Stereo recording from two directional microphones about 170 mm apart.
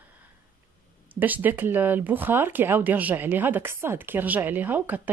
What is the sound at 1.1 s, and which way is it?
Speech, 10° right (ahead or behind).